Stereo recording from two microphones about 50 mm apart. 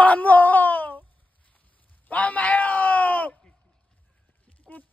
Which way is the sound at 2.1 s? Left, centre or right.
Left.